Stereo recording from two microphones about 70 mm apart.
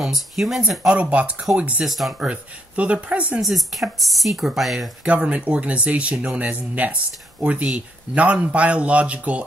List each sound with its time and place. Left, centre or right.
0.0 s speech: centre
1.8 s speech: centre
2.1 s speech: centre
3.3 s speech: centre
5.0 s speech: centre